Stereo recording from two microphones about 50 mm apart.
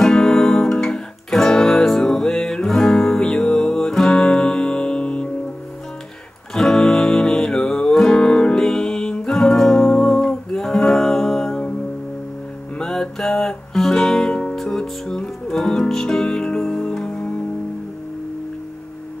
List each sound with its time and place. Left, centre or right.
0.0 s music: centre
6.5 s music: centre
12.7 s music: centre